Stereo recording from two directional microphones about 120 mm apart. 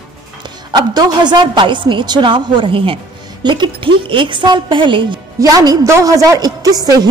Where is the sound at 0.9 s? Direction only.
35° right (ahead or behind).